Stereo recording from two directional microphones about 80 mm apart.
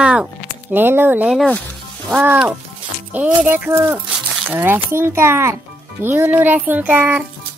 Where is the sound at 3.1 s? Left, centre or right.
Centre.